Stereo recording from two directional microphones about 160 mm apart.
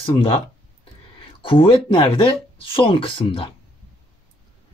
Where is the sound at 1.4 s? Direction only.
35° left (ahead or behind).